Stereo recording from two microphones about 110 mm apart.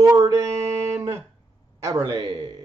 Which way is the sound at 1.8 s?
35° right (ahead or behind).